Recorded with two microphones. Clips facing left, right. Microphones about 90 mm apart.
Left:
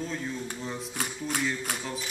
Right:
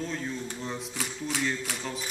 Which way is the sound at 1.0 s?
45° left (ahead or behind).